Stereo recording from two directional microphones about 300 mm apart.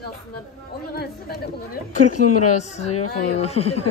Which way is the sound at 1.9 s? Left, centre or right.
Left.